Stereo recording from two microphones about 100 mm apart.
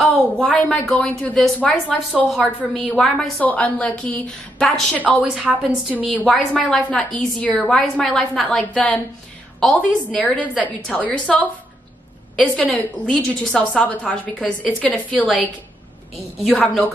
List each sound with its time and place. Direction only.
0.2 s a woman's voice: 10° left (ahead or behind); by 5.9 s 5° right (ahead or behind)
6.3 s a woman's voice: 10° left (ahead or behind)
16.5 s a woman's voice: 15° left (ahead or behind)